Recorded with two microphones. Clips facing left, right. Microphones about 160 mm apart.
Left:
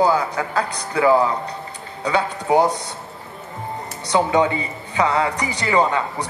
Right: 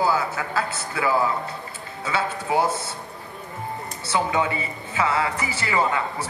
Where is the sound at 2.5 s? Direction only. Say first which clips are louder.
Left 6 dB; 20° left (ahead or behind).